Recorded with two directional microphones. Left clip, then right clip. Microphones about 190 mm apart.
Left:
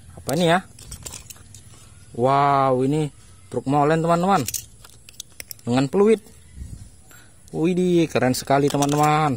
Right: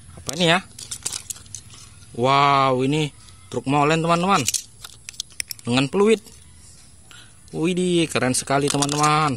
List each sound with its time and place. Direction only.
0.1 s a sound: 5° left (ahead or behind)
2.1 s speech: 5° left (ahead or behind)
5.7 s speech: 5° left (ahead or behind)
8.6 s speech: centre (ahead or behind)